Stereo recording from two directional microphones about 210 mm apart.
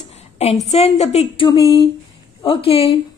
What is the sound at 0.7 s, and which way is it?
Speech, 30° left (ahead or behind).